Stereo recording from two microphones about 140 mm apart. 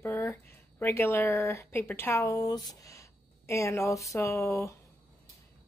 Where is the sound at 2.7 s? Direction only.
25° left (ahead or behind).